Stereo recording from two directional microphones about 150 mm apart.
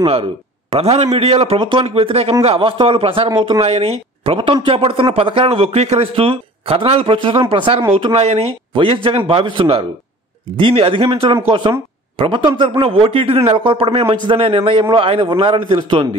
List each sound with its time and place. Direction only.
0.0 s speech: 35° right (ahead or behind)
3.6 s speech: 45° right (ahead or behind)